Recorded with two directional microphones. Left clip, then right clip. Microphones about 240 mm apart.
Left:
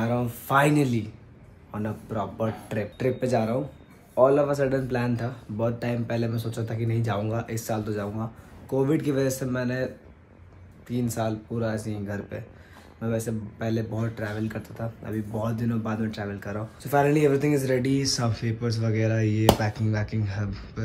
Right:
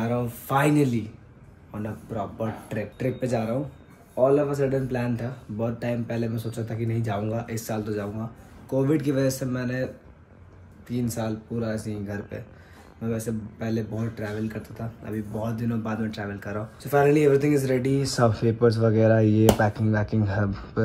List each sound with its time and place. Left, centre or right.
0.0 s speech: centre
10.9 s speech: centre